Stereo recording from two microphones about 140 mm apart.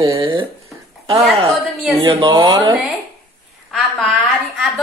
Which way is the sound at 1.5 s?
Centre (ahead or behind).